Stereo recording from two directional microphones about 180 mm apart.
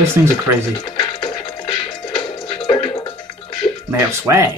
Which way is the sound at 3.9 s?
15° right (ahead or behind).